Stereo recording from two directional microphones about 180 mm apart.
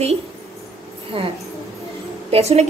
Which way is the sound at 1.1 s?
30° right (ahead or behind).